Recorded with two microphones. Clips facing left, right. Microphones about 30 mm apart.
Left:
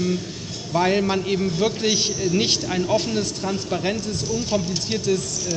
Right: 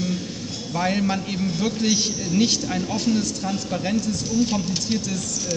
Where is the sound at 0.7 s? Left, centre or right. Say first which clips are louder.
Left 3 dB; centre.